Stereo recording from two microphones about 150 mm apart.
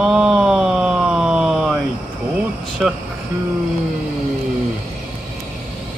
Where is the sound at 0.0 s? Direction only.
5° right (ahead or behind).